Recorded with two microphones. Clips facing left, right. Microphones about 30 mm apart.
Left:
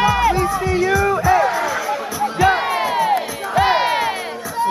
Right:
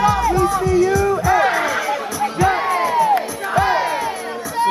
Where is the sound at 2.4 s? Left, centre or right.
Left.